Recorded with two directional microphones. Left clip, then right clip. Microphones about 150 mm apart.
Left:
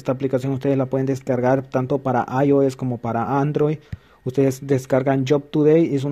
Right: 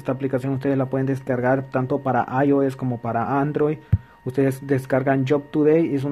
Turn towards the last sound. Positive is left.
turn(degrees=30)  # may be behind; listen again after turning